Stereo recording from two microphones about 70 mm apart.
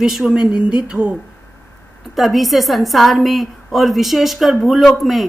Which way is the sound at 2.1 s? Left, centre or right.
Centre.